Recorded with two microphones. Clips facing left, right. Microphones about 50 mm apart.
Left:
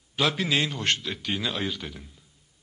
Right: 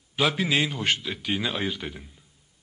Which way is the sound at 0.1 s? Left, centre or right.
Centre.